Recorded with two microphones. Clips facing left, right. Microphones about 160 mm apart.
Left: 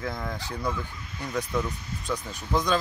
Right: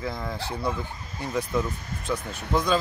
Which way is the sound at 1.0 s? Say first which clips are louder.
Right 2 dB; 40° right (ahead or behind).